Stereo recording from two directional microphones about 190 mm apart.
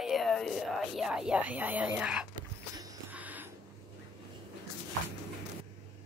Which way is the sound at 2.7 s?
20° right (ahead or behind).